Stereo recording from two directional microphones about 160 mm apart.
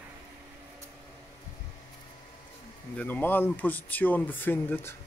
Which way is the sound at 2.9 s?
10° left (ahead or behind).